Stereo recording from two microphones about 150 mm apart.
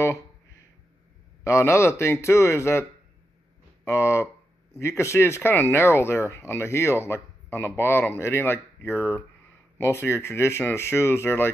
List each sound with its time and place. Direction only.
1.5 s speech: 20° left (ahead or behind)
8.9 s speech: 15° right (ahead or behind)
9.8 s speech: 15° left (ahead or behind)